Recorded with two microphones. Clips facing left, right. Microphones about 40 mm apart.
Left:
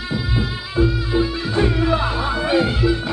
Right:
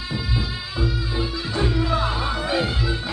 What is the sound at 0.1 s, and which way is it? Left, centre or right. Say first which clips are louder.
Music: left 4 dB; left.